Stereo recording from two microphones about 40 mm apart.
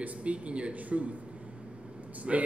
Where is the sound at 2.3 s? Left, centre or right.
Right.